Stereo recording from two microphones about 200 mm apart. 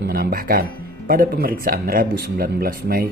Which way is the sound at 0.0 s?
50° right (ahead or behind).